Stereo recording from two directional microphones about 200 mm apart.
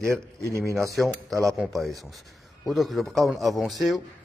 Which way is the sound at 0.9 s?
Centre (ahead or behind).